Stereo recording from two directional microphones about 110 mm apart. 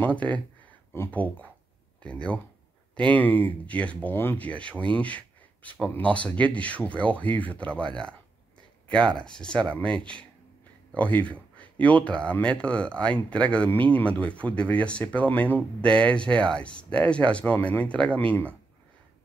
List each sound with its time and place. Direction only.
0.0 s speech: 10° left (ahead or behind)